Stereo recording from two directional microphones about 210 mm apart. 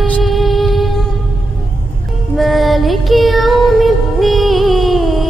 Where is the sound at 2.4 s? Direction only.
Centre (ahead or behind).